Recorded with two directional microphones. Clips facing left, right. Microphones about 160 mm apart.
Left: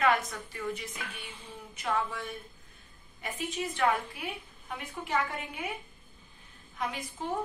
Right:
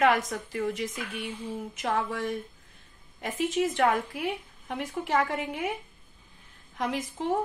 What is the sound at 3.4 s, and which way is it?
A woman's voice, 90° right.